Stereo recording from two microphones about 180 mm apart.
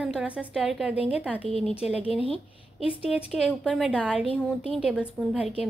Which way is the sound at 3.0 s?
5° right (ahead or behind).